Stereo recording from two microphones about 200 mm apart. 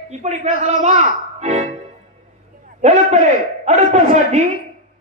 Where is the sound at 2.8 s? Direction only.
35° right (ahead or behind).